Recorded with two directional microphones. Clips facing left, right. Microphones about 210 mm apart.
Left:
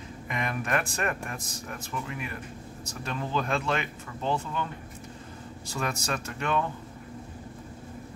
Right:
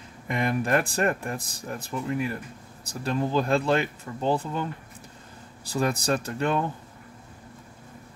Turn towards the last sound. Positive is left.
turn(degrees=-35)  # may be behind; listen again after turning